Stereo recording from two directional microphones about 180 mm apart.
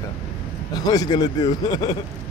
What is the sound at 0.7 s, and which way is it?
Speech, 20° left (ahead or behind).